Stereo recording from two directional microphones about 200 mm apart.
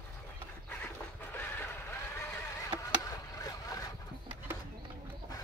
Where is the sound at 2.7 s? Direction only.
15° left (ahead or behind).